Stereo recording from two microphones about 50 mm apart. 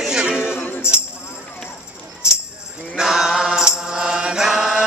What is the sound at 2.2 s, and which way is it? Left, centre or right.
Music, centre.